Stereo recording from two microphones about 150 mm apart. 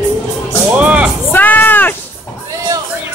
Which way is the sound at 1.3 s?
15° left (ahead or behind).